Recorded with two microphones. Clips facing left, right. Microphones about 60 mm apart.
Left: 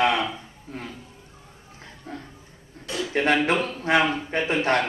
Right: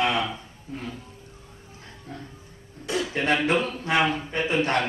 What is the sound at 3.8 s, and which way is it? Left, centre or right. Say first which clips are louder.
Speech: left 2 dB; left.